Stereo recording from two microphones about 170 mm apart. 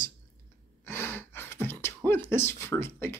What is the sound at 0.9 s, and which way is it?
Speech, 10° left (ahead or behind).